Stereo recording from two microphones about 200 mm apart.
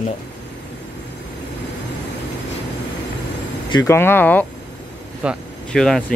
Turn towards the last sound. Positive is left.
turn(degrees=0)  # may be behind; listen again after turning